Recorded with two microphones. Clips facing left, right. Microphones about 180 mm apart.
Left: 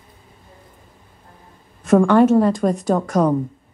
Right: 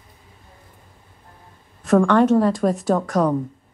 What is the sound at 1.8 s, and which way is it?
A woman's voice, 5° left (ahead or behind).